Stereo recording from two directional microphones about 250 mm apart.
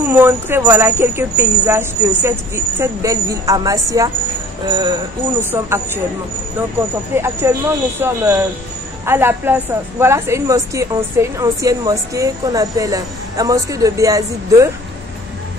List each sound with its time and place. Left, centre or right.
0.1 s a woman's voice: centre
7.2 s a woman's voice: centre